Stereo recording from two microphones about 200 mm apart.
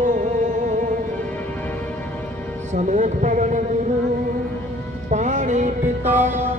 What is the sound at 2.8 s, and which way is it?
Music, 40° right (ahead or behind).